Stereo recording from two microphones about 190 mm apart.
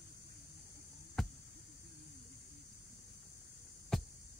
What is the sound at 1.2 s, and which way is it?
Cricket, centre (ahead or behind).